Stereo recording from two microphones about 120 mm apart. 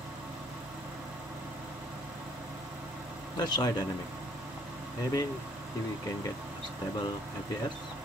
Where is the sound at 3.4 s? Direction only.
30° left (ahead or behind).